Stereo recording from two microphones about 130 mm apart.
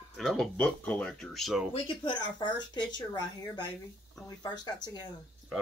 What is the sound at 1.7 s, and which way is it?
Speech, 40° left (ahead or behind).